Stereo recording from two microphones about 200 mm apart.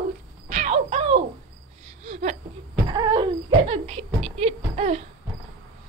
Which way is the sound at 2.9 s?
20° right (ahead or behind).